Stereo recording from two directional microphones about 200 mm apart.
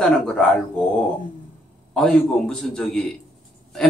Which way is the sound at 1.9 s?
Centre (ahead or behind).